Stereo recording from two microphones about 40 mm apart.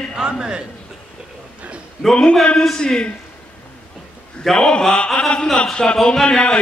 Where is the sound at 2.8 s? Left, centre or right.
Left.